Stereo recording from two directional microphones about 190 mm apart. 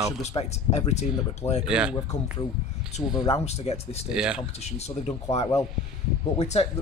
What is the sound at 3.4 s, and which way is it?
Speech, 35° left (ahead or behind).